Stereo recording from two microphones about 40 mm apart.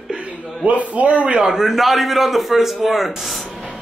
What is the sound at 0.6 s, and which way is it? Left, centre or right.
Speech, right.